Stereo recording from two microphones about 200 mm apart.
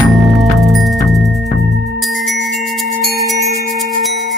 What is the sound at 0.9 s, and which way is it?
Music, 20° left (ahead or behind).